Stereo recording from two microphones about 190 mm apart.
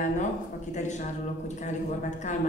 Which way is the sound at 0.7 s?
40° left (ahead or behind).